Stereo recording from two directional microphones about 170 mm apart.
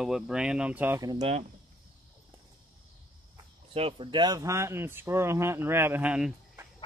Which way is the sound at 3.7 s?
35° right (ahead or behind).